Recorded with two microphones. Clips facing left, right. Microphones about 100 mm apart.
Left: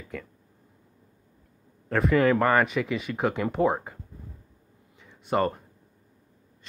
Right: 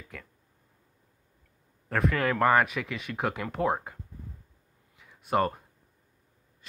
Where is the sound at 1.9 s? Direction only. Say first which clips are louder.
Left 6 dB; centre (ahead or behind).